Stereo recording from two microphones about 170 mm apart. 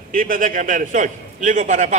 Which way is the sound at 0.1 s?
55° right (ahead or behind).